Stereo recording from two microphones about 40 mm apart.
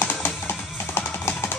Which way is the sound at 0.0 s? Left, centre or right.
Left.